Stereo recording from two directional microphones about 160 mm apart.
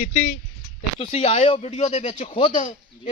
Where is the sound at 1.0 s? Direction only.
35° left (ahead or behind).